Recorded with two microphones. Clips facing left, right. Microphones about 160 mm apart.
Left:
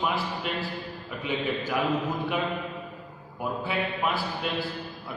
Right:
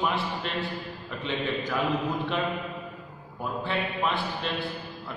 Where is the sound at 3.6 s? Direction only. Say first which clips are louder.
Right 1 dB; 5° left (ahead or behind).